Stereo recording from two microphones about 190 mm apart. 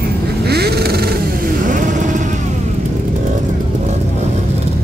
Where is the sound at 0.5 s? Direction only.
55° right (ahead or behind); by 2.4 s 40° right (ahead or behind).